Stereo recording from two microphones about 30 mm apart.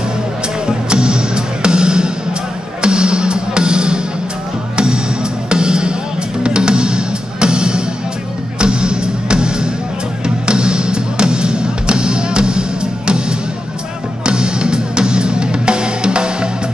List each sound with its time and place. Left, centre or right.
0.7 s music: right